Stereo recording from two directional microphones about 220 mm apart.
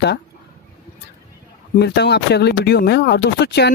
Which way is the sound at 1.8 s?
50° left (ahead or behind).